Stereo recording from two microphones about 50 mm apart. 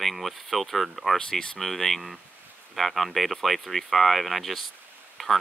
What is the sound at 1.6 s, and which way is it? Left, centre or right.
Speech, centre.